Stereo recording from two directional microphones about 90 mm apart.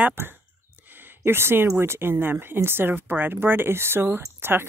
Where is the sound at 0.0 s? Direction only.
25° right (ahead or behind).